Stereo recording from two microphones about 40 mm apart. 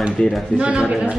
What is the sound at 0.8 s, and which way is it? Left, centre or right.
Speech, centre.